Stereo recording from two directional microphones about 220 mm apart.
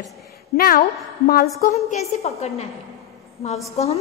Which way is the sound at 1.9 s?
30° left (ahead or behind).